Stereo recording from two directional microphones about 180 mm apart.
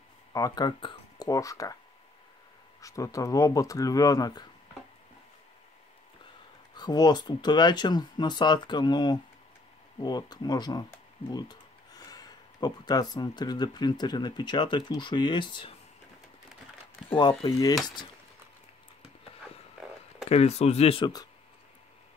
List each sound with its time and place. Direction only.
0.3 s speech: 20° left (ahead or behind)
2.8 s speech: 20° left (ahead or behind)
6.7 s speech: 20° left (ahead or behind)
17.1 s speech: 25° left (ahead or behind)
20.2 s speech: 35° left (ahead or behind)